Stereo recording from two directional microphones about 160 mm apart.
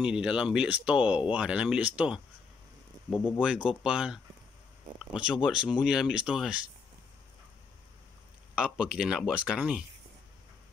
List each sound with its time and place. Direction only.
0.0 s speech: 5° right (ahead or behind)
3.3 s speech: 5° right (ahead or behind)
8.5 s speech: 5° right (ahead or behind)